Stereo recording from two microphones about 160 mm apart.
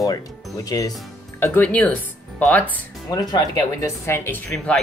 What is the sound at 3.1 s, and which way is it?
Speech, 25° left (ahead or behind).